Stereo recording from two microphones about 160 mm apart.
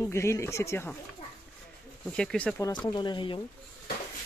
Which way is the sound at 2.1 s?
5° left (ahead or behind).